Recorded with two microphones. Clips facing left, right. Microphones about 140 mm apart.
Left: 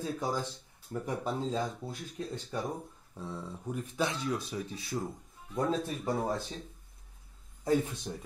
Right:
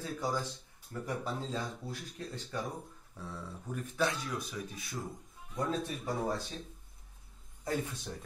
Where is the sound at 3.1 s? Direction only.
20° left (ahead or behind).